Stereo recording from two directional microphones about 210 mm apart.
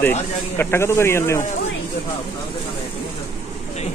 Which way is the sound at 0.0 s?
10° left (ahead or behind).